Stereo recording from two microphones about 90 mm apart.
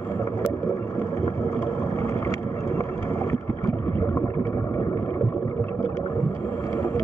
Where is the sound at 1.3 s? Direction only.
30° left (ahead or behind).